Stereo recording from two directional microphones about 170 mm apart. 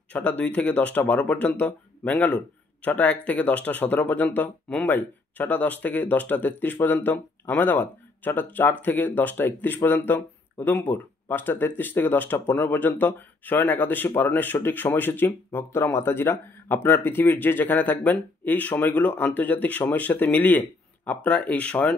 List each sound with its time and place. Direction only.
0.1 s speech: 10° left (ahead or behind)